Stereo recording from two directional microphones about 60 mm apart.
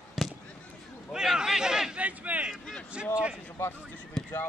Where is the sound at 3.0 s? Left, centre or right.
Centre.